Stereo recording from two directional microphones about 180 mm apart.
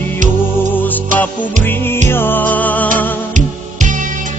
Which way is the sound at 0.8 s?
10° left (ahead or behind).